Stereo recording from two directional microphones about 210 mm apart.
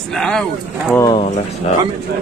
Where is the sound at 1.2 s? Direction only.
30° left (ahead or behind).